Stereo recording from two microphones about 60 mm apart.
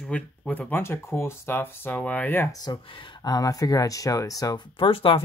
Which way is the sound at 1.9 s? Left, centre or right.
Left.